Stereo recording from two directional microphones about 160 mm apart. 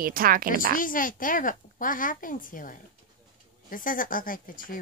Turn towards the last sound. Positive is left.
turn(degrees=60)  # may be behind; listen again after turning